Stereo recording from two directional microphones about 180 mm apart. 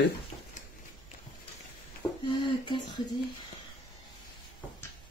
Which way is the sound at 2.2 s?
25° left (ahead or behind).